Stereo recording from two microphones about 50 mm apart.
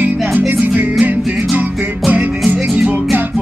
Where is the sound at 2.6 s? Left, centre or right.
Centre.